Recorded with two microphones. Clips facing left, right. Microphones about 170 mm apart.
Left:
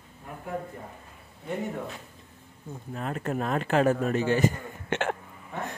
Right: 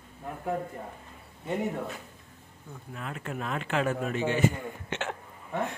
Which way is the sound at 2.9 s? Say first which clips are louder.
Left 6 dB; 40° left (ahead or behind).